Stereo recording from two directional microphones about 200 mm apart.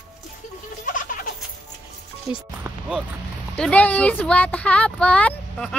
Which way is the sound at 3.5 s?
5° left (ahead or behind).